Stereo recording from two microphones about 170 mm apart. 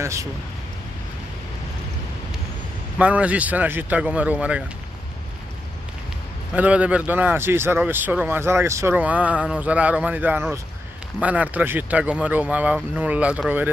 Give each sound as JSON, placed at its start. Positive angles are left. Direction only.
{"t": 0.0, "sound": "speech", "side_deg": -15}
{"t": 3.0, "sound": "speech", "side_deg": -10}
{"t": 6.5, "sound": "speech", "side_deg": -10}